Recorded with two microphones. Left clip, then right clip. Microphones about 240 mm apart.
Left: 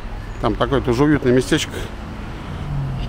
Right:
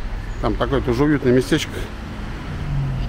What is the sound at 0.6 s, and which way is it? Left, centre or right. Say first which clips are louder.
Speech: left 2 dB; centre.